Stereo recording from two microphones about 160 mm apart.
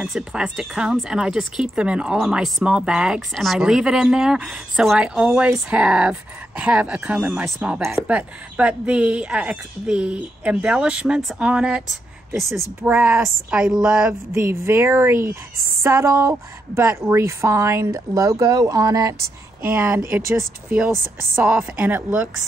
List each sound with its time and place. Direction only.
0.0 s a woman's voice: 5° right (ahead or behind)
12.8 s speech: 5° right (ahead or behind)
14.3 s a woman's voice: 15° right (ahead or behind)